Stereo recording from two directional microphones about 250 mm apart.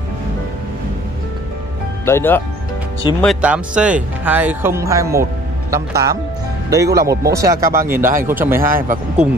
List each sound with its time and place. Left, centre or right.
2.0 s speech: centre
3.2 s speech: centre
8.7 s speech: right